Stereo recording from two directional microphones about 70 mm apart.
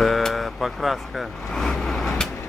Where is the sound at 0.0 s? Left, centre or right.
Centre.